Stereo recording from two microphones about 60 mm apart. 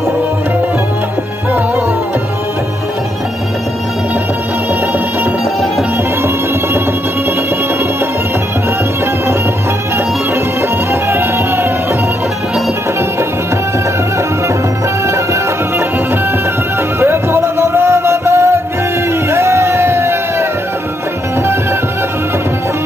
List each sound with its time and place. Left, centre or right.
10.9 s music: right
17.0 s music: right
19.3 s a sound: right